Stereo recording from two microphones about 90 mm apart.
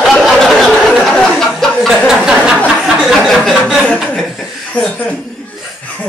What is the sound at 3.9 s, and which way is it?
Speech, centre (ahead or behind).